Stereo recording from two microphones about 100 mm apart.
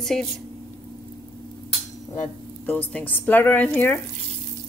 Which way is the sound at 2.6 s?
15° left (ahead or behind).